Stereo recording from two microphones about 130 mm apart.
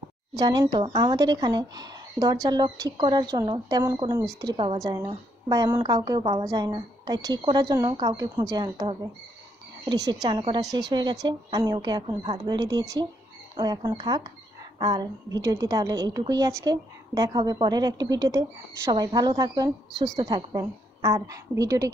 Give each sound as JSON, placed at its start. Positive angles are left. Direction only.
{"t": 0.4, "sound": "a woman's voice", "side_deg": -35}
{"t": 4.7, "sound": "a woman's voice", "side_deg": -25}